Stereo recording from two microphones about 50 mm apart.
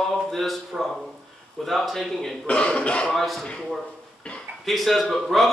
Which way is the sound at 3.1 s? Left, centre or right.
Centre.